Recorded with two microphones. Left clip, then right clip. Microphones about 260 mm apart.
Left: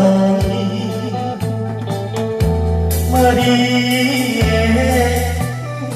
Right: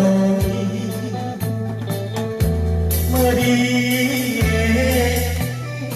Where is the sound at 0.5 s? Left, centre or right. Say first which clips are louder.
Left 4 dB; right.